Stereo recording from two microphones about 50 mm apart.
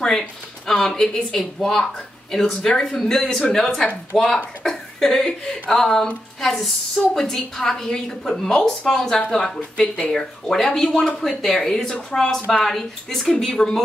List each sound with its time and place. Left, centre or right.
0.0 s a woman's voice: centre
10.1 s a woman's voice: centre